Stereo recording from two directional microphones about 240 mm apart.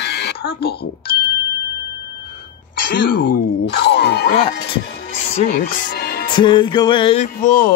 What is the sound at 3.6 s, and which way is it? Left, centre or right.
Speech, left.